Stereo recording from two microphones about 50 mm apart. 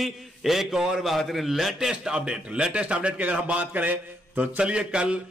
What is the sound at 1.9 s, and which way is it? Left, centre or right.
A man's voice, right.